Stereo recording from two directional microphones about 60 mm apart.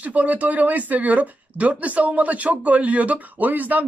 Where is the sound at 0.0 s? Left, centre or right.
Right.